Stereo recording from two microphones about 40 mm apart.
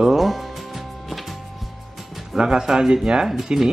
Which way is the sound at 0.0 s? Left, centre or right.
Centre.